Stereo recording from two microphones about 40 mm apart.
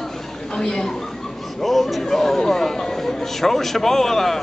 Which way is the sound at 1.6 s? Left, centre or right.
Centre.